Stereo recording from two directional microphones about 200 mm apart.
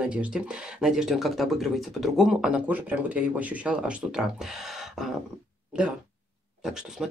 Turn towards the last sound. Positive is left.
turn(degrees=0)  # may be behind; listen again after turning